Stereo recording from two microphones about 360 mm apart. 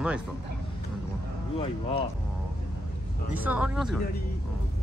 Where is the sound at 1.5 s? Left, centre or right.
Centre.